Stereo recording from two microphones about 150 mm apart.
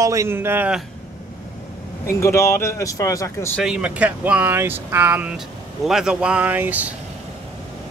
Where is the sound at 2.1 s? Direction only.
20° left (ahead or behind).